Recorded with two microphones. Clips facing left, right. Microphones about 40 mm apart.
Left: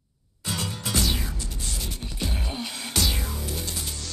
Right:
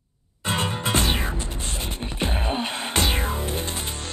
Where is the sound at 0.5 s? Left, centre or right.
Right.